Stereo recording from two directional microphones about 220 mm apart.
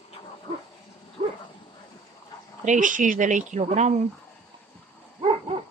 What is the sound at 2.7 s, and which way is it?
Speech, 35° right (ahead or behind).